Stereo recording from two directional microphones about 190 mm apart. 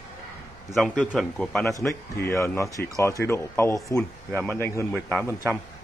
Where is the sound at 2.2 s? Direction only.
15° left (ahead or behind).